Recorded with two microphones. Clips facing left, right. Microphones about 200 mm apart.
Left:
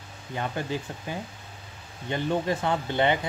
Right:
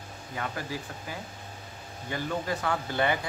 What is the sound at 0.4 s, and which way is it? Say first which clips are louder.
Speech: left 4 dB; 25° left (ahead or behind).